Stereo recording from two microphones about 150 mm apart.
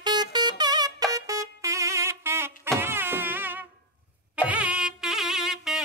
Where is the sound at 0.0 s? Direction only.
30° right (ahead or behind).